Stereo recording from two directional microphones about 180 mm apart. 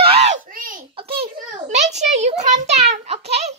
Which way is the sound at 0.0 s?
35° right (ahead or behind).